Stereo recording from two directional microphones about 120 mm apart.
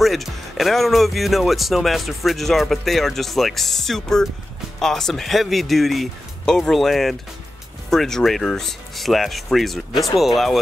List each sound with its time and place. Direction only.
0.0 s speech: centre (ahead or behind)